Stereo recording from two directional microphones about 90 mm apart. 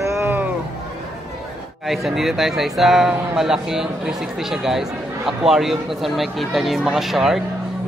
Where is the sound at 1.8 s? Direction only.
Centre (ahead or behind).